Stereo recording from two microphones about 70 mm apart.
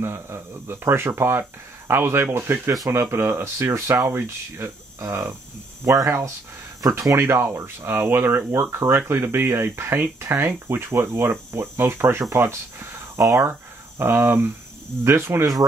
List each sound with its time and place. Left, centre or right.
0.0 s speech: right
13.2 s speech: right
13.5 s speech: right